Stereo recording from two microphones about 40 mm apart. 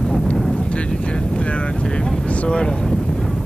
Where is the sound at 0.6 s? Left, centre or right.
Left.